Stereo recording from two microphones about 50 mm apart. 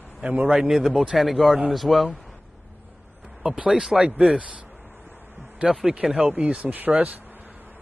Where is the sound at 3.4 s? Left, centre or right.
Right.